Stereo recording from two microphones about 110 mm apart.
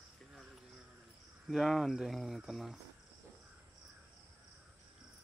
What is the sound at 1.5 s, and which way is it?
Speech, centre (ahead or behind).